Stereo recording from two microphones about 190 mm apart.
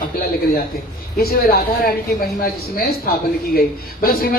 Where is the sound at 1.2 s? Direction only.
50° left (ahead or behind).